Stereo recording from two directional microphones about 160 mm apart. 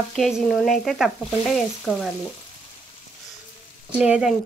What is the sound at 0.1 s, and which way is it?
Frying, centre (ahead or behind).